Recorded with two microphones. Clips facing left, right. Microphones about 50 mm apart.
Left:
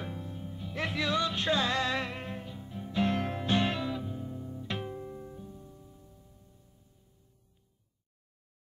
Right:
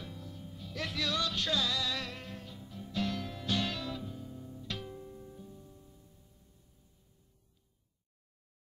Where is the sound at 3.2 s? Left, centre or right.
Left.